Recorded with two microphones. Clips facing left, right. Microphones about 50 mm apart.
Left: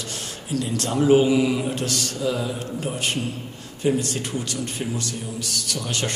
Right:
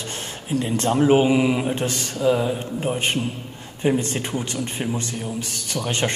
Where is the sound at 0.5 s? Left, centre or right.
Right.